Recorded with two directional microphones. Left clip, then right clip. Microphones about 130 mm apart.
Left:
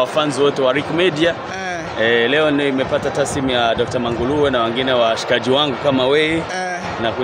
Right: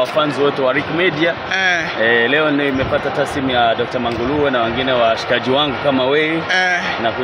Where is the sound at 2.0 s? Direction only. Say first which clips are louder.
Left 1 dB; 30° left (ahead or behind).